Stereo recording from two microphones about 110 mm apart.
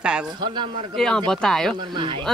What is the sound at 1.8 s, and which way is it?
Speech, 45° right (ahead or behind).